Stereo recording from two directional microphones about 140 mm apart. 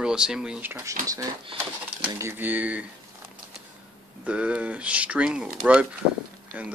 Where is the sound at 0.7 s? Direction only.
25° right (ahead or behind).